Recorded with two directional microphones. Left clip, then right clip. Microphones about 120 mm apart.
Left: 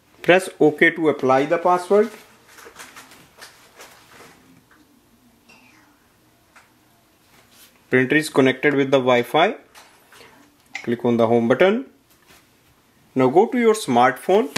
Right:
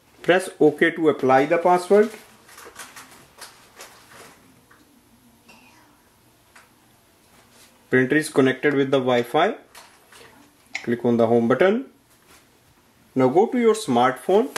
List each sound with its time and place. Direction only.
0.2 s speech: 35° left (ahead or behind)
1.2 s speech: 10° left (ahead or behind)
1.6 s speech: 5° right (ahead or behind)
7.9 s speech: 35° left (ahead or behind)
10.8 s speech: 30° left (ahead or behind)
13.1 s speech: 35° left (ahead or behind)